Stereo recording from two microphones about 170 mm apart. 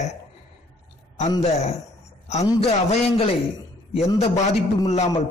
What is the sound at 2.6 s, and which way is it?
Speech, 35° left (ahead or behind).